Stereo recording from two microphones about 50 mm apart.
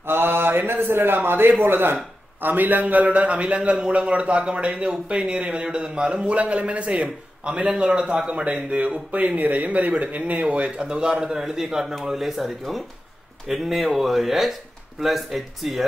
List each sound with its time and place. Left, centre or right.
0.0 s a man's voice: right
10.9 s a man's voice: centre